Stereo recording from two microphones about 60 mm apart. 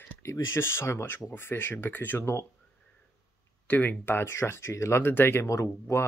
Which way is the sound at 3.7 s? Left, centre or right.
Left.